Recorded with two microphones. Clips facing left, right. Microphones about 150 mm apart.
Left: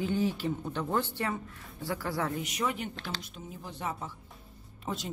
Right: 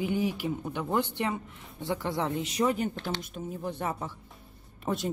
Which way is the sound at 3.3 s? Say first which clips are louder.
Right 8 dB; 55° right (ahead or behind).